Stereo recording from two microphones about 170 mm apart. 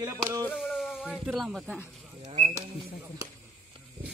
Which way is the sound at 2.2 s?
40° right (ahead or behind).